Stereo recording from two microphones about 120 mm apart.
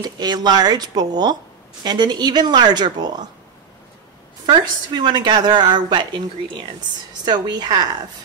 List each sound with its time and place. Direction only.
0.0 s speech: 35° right (ahead or behind)
4.5 s speech: 40° right (ahead or behind)
7.2 s speech: 35° right (ahead or behind)